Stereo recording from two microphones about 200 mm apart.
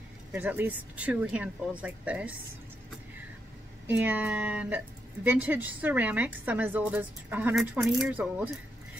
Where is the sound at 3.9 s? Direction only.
10° right (ahead or behind).